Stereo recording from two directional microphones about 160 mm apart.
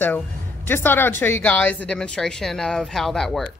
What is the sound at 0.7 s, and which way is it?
Speech, 15° left (ahead or behind).